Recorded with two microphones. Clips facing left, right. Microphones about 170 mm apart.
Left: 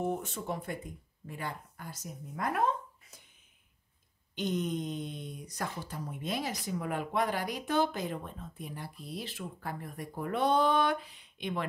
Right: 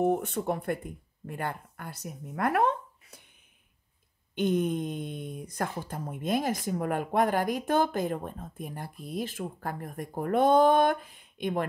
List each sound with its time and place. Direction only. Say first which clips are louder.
0.0 s speech: right 7 dB; 60° right (ahead or behind)
4.4 s speech: right 6 dB; 55° right (ahead or behind)